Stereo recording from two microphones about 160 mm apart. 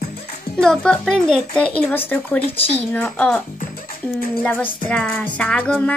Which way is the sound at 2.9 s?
10° left (ahead or behind).